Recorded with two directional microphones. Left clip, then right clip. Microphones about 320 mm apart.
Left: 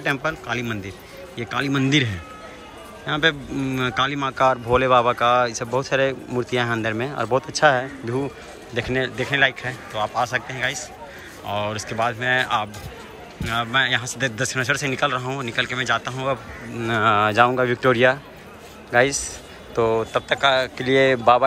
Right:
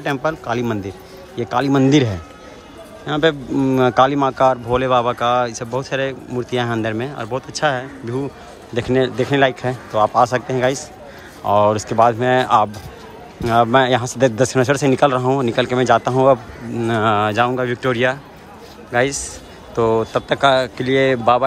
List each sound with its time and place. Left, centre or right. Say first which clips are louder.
0.0 s a man's voice: right 3 dB; centre